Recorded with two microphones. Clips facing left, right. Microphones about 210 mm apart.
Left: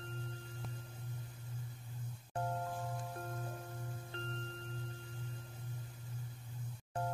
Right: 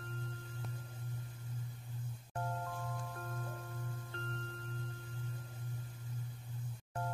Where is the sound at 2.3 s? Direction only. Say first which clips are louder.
Left 2 dB; 25° left (ahead or behind).